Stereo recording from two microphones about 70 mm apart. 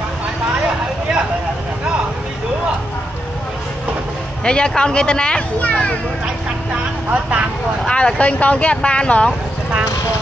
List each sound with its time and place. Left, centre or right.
4.5 s speech: centre
6.2 s speech: centre
7.8 s speech: centre